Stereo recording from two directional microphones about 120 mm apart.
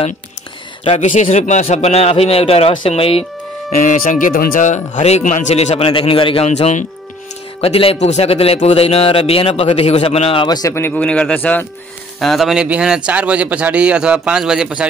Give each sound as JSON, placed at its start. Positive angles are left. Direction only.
{"t": 0.8, "sound": "a man's voice", "side_deg": 75}
{"t": 3.7, "sound": "speech", "side_deg": 90}
{"t": 6.4, "sound": "speech", "side_deg": 70}
{"t": 7.6, "sound": "a man's voice", "side_deg": 55}
{"t": 10.7, "sound": "speech", "side_deg": 15}
{"t": 12.2, "sound": "speech", "side_deg": 0}